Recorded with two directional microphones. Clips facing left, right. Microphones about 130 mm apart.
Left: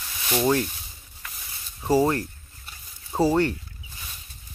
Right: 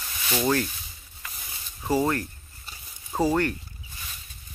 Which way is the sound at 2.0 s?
25° left (ahead or behind).